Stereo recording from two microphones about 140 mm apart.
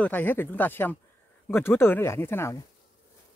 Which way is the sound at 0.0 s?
15° left (ahead or behind).